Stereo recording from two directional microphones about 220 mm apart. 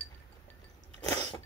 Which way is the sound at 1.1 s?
15° left (ahead or behind).